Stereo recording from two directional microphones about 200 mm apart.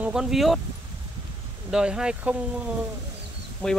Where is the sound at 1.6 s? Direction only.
5° right (ahead or behind).